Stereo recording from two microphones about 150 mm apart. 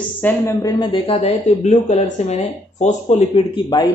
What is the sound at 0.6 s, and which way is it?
Speech, 25° left (ahead or behind).